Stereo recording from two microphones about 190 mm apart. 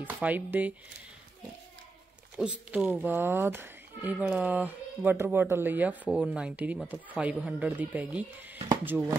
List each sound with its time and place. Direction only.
0.0 s speech: 10° right (ahead or behind)
2.3 s speech: 5° right (ahead or behind)